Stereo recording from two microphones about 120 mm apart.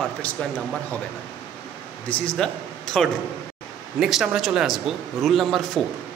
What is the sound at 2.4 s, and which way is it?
A man's voice, 5° left (ahead or behind).